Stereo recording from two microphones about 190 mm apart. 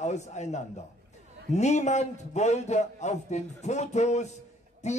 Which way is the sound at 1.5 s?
35° left (ahead or behind).